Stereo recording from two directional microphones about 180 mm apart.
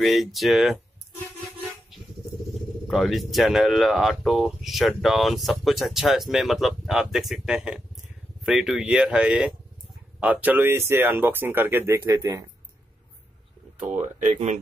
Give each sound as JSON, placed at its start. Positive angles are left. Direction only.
{"t": 0.0, "sound": "speech", "side_deg": 0}
{"t": 2.9, "sound": "speech", "side_deg": 0}
{"t": 13.7, "sound": "speech", "side_deg": -40}